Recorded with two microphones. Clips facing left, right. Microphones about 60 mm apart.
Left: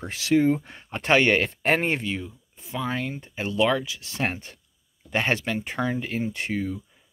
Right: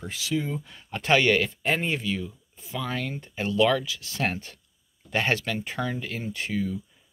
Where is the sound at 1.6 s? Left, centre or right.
Left.